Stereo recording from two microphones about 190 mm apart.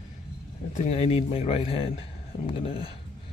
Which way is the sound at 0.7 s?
35° left (ahead or behind).